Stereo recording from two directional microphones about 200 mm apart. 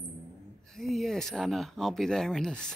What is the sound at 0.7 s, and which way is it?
Speech, centre (ahead or behind).